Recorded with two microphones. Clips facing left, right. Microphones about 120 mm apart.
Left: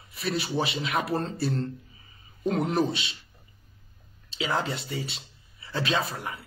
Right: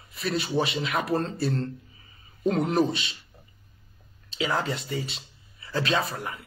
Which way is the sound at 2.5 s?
35° right (ahead or behind).